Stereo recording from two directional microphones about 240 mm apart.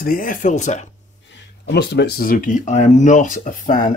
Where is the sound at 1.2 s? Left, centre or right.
Left.